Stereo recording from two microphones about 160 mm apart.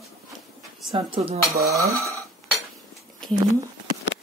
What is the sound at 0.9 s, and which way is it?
Speech, 35° right (ahead or behind).